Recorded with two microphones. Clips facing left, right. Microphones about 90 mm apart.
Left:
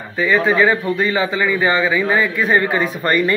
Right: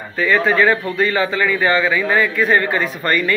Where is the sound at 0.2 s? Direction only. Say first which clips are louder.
Even; 10° left (ahead or behind).